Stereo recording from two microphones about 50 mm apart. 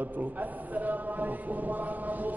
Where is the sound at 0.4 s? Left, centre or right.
Right.